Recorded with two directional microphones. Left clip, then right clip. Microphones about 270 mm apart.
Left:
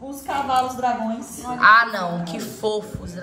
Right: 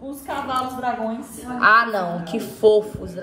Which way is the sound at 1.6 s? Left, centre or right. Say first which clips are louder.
Left 1 dB; centre.